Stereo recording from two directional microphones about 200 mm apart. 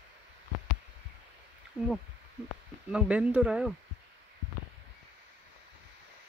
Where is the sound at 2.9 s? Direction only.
5° right (ahead or behind).